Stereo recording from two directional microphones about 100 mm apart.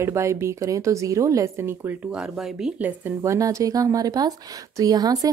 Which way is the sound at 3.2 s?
35° right (ahead or behind).